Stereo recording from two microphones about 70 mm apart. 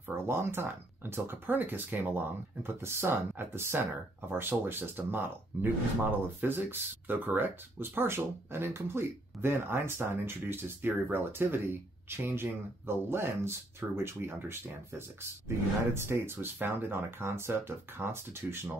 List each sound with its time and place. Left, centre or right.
0.2 s speech: right